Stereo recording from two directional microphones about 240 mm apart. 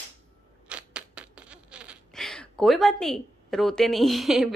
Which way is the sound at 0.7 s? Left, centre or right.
Centre.